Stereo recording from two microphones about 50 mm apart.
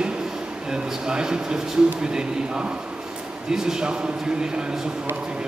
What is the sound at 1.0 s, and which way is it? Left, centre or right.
Speech, centre.